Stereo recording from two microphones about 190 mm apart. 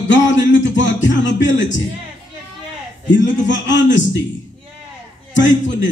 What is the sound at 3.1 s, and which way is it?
Speech, 70° left (ahead or behind).